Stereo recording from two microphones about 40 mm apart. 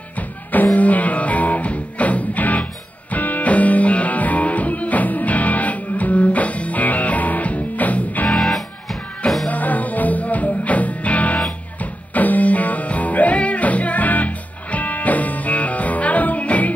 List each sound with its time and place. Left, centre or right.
0.7 s music: left
8.4 s music: centre
9.5 s music: left